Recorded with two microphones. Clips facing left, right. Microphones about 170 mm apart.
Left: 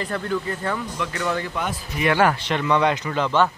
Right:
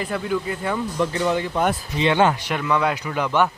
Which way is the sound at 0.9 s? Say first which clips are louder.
Right 6 dB; 35° right (ahead or behind).